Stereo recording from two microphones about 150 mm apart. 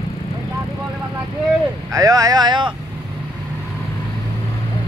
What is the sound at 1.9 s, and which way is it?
Speech, 25° right (ahead or behind).